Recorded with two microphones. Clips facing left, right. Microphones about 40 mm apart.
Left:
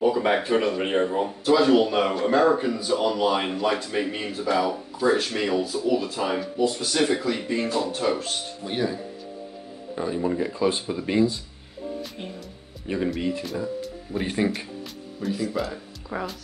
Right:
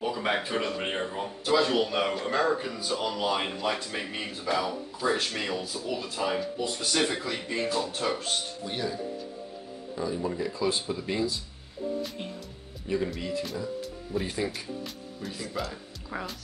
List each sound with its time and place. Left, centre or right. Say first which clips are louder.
0.1 s a sound: left 6 dB; centre
0.5 s a man's voice: left 7 dB; centre
8.6 s speech: left 8 dB; left
9.9 s speech: left 5 dB; left
10.9 s speech: left 7 dB; left
12.8 s speech: left 3 dB; left
14.1 s speech: left 5 dB; left
15.2 s speech: left 8 dB; centre